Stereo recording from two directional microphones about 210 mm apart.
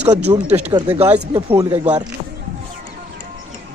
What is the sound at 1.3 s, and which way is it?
Speech, 15° right (ahead or behind).